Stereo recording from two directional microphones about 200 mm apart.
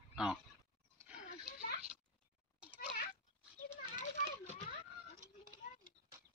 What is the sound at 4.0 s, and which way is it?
Children playing, 35° left (ahead or behind).